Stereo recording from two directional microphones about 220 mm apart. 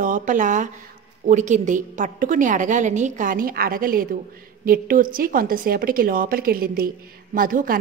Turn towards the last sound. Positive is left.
turn(degrees=-40)  # may be behind; listen again after turning